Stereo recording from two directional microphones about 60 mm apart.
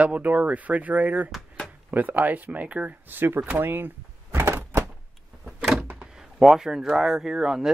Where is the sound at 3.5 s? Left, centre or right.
Right.